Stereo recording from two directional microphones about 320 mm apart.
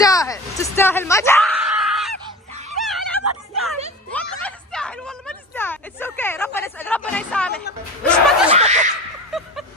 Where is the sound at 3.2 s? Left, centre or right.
Right.